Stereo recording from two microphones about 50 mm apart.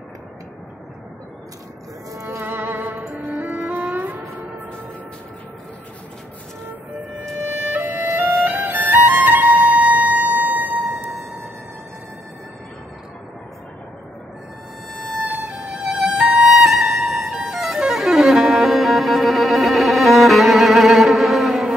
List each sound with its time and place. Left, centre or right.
2.1 s music: right
2.4 s music: right
3.3 s music: right
3.5 s music: right
7.6 s music: right
15.5 s violin: centre